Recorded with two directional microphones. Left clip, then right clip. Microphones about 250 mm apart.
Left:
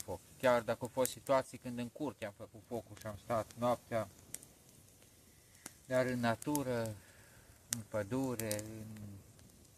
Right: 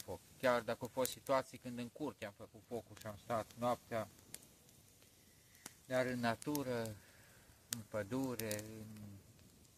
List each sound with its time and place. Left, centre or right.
0.0 s a sound: centre
1.1 s speech: centre
5.9 s speech: centre
7.9 s speech: centre